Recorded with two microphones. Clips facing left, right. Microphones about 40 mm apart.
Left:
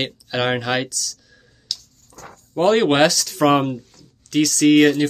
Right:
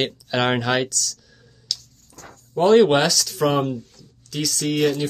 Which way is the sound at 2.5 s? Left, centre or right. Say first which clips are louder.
Right 2 dB; left.